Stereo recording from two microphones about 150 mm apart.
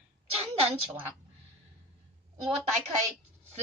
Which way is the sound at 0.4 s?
40° right (ahead or behind).